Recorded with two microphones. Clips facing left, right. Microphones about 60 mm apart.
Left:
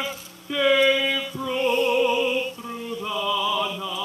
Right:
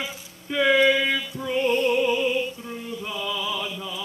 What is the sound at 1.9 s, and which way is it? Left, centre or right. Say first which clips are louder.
Music: left 1 dB; centre.